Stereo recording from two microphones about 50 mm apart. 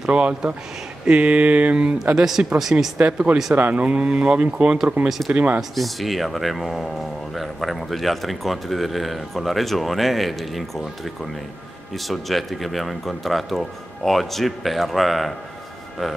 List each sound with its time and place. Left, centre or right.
0.1 s speech: right
2.1 s speech: centre
3.0 s speech: right
3.5 s speech: right
3.8 s speech: right
5.6 s a man's voice: centre
12.1 s a man's voice: centre